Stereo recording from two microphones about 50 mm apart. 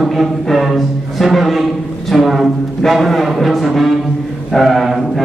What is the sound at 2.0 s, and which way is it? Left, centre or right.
A man's voice, centre.